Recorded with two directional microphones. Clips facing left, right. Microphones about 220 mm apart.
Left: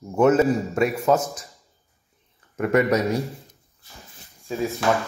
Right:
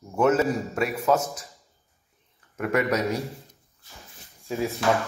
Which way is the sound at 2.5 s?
5° left (ahead or behind).